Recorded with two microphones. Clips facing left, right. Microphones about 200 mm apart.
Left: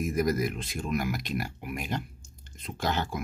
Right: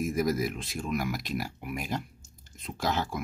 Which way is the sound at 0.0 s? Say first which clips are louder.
Left 1 dB; centre (ahead or behind).